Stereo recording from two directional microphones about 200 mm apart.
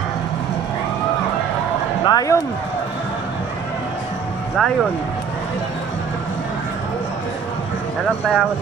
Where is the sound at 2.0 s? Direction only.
20° left (ahead or behind).